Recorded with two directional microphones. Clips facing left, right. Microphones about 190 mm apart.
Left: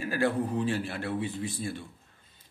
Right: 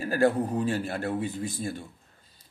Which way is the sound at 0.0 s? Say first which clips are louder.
Right 4 dB; 40° right (ahead or behind).